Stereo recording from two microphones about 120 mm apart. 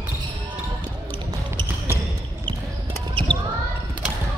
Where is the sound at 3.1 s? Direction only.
35° right (ahead or behind).